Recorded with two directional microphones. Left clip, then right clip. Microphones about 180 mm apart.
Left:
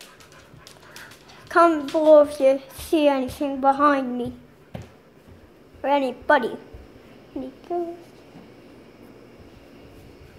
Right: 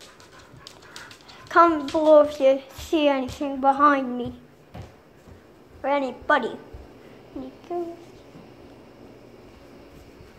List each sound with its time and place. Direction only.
1.5 s a woman's voice: 10° left (ahead or behind)
5.8 s a woman's voice: 20° left (ahead or behind)
7.7 s a woman's voice: 15° left (ahead or behind)